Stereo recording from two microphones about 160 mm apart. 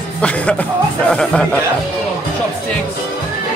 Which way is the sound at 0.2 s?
10° left (ahead or behind).